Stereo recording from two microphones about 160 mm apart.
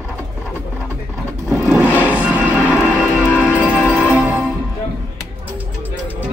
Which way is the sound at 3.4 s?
15° left (ahead or behind).